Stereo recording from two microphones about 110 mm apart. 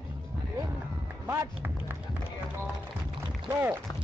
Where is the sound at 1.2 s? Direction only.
20° right (ahead or behind).